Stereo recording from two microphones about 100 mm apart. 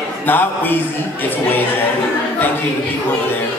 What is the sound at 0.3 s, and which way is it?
Speech, 20° left (ahead or behind).